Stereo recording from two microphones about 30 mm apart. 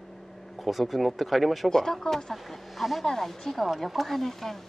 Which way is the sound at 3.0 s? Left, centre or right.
Centre.